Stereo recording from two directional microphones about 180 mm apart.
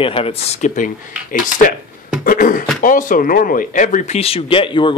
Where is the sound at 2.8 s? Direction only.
45° left (ahead or behind).